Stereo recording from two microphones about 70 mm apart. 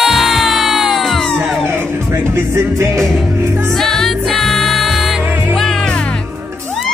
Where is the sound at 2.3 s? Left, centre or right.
Right.